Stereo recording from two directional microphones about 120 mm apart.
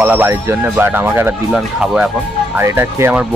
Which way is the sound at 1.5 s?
5° right (ahead or behind).